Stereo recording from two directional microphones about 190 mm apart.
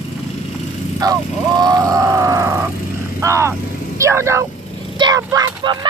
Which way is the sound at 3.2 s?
15° right (ahead or behind).